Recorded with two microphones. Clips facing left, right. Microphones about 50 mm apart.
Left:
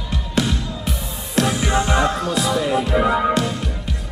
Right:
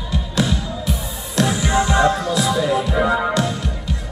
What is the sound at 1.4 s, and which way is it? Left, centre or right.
Music, left.